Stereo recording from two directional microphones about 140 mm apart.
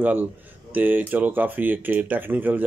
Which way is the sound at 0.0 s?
10° right (ahead or behind).